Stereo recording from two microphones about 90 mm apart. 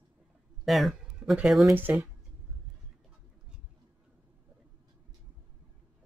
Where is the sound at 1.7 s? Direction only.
20° right (ahead or behind).